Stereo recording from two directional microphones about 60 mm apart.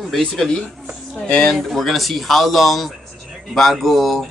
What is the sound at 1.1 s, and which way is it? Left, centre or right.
Speech, centre.